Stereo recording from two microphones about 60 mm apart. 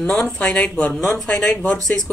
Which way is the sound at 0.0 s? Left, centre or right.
Left.